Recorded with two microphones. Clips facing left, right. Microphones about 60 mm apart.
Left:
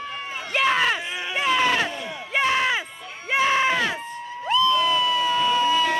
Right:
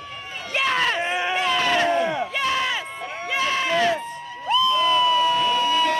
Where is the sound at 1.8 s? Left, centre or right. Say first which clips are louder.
Right 11 dB; right.